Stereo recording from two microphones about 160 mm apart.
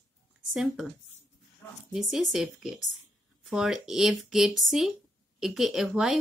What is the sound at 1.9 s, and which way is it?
A woman's voice, centre (ahead or behind).